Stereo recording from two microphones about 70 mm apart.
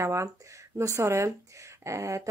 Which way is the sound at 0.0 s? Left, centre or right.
Right.